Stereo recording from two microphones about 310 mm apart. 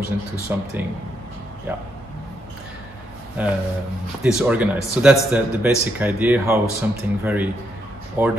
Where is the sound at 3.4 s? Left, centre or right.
Centre.